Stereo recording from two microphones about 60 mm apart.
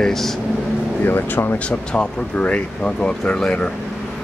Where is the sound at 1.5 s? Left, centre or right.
Left.